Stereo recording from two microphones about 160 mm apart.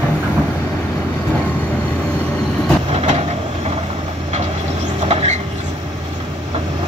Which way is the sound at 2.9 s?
45° right (ahead or behind).